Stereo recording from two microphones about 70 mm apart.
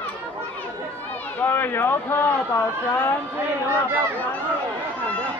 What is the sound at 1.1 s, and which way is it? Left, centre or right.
Speech, left.